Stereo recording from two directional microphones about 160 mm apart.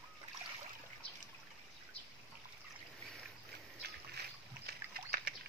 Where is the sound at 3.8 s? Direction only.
85° right.